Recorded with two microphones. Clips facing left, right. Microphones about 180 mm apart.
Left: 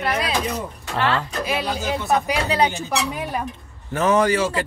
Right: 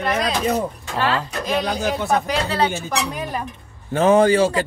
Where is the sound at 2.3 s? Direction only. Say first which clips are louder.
Even; 15° left (ahead or behind).